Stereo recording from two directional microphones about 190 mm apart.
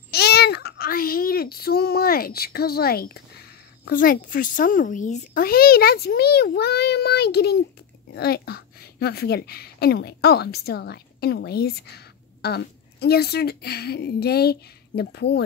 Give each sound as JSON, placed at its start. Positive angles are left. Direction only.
{"t": 0.1, "sound": "child singing", "side_deg": 60}
{"t": 3.8, "sound": "a child's voice", "side_deg": 45}